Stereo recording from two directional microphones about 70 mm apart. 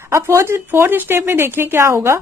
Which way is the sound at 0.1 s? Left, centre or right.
Right.